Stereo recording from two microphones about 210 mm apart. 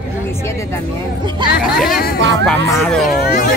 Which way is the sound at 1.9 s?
45° left (ahead or behind).